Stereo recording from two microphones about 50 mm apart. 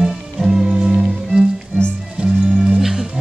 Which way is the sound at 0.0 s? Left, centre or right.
Centre.